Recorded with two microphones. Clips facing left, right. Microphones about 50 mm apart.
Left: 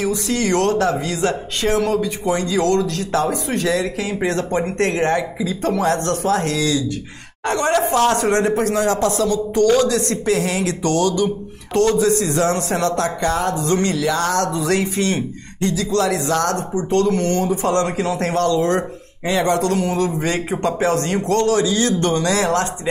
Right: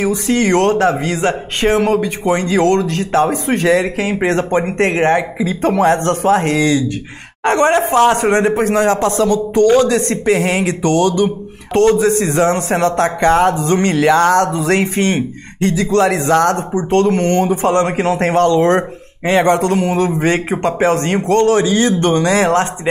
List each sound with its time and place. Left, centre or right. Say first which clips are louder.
0.0 s speech: right 5 dB; right
9.8 s speech: right 4 dB; right
13.9 s speech: right 8 dB; right